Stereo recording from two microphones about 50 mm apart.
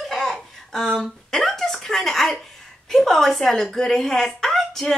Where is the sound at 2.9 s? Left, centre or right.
Centre.